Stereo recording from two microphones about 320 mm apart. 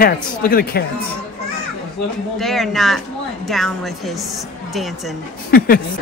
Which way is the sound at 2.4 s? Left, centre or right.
Centre.